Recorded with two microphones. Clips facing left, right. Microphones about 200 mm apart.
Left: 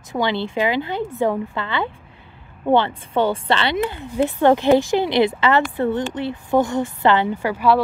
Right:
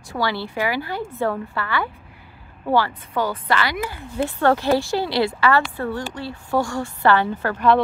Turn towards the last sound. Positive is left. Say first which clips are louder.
# left 1 dB
turn(degrees=10)  # may be behind; listen again after turning